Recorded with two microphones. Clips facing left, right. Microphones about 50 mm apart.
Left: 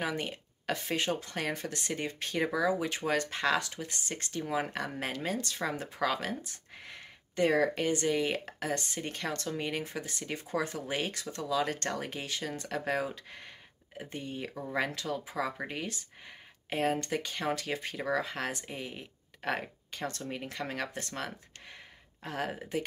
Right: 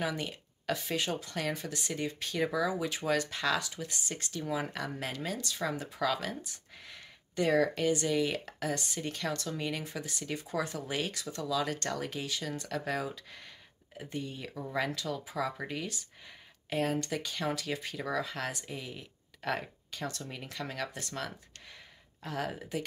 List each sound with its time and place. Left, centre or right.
0.0 s speech: left
1.5 s speech: left